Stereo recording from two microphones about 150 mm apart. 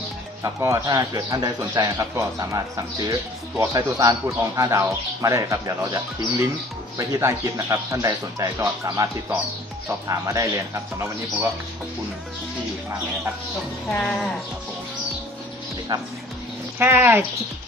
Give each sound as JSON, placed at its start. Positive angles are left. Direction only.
{"t": 0.4, "sound": "a man's voice", "side_deg": -20}
{"t": 13.8, "sound": "speech", "side_deg": 0}
{"t": 15.9, "sound": "a man's voice", "side_deg": -30}
{"t": 16.7, "sound": "speech", "side_deg": -15}